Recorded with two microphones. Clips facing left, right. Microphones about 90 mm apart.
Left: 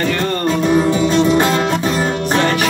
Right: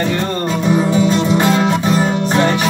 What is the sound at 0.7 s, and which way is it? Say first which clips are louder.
Music: right 1 dB; 10° right (ahead or behind).